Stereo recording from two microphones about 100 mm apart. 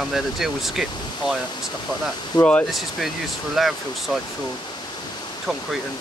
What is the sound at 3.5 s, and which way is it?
Speech, centre (ahead or behind).